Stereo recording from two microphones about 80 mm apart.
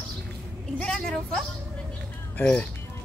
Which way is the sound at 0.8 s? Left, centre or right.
Centre.